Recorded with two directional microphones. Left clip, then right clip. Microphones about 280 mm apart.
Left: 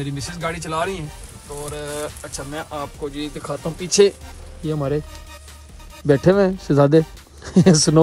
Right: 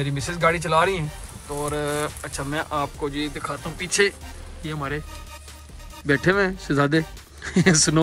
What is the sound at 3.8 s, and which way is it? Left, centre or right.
Speech, left.